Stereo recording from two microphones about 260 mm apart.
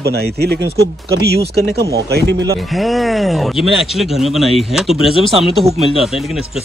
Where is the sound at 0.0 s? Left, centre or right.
Right.